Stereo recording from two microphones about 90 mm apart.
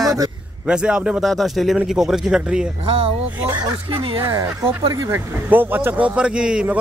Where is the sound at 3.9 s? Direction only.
80° right.